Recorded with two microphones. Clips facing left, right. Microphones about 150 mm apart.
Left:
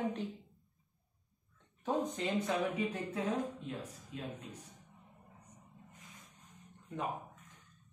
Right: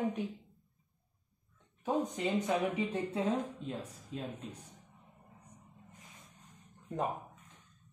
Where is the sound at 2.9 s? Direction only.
25° right (ahead or behind).